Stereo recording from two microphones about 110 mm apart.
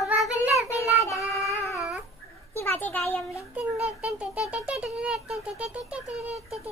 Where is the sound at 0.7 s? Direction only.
25° left (ahead or behind).